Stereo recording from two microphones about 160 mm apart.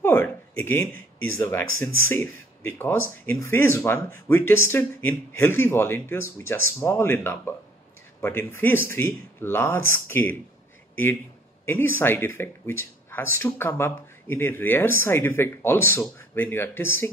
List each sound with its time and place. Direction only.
0.0 s speech: 15° left (ahead or behind)
11.6 s speech: 15° left (ahead or behind)